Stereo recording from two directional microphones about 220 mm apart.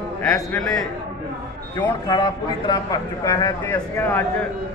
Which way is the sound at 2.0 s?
20° left (ahead or behind).